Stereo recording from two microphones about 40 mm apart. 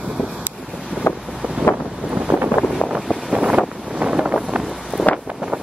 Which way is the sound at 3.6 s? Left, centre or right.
Right.